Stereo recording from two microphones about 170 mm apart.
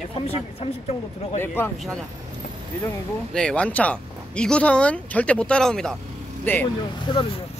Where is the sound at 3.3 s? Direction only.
5° left (ahead or behind).